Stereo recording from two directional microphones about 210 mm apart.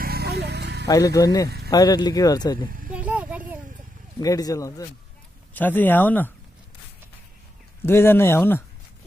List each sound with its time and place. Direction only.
0.0 s music: 50° right (ahead or behind)
0.8 s speech: 15° left (ahead or behind)
2.9 s vehicle: 5° right (ahead or behind)
4.2 s speech: 15° left (ahead or behind)
7.8 s speech: 10° left (ahead or behind)